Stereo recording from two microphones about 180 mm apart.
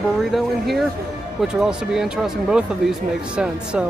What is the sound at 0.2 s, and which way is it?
Speech, centre (ahead or behind).